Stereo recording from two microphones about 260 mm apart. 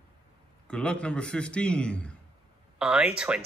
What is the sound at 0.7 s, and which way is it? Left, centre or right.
Speech, centre.